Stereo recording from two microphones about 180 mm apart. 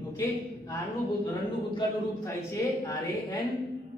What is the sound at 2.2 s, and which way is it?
A man's voice, 15° left (ahead or behind).